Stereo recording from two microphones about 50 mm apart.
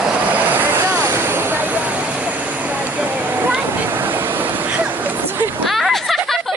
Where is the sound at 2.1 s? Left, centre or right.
Right.